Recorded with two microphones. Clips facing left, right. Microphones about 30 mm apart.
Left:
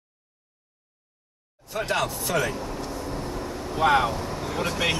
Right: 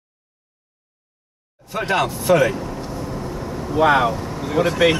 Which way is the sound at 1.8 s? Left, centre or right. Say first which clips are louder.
Right 6 dB; right.